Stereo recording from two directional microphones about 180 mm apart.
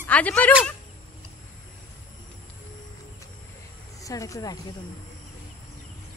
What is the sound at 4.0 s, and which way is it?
Speech, 20° left (ahead or behind).